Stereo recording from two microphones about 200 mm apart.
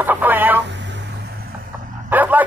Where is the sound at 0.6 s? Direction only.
60° right (ahead or behind).